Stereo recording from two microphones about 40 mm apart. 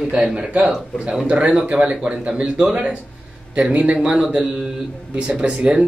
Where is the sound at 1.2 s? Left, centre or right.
Right.